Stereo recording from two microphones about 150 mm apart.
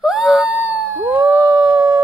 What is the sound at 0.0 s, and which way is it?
Howl, 5° right (ahead or behind).